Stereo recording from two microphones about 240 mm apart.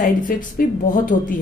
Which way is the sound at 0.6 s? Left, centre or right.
Left.